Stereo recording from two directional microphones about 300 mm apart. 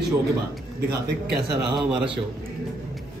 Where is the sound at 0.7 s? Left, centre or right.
Right.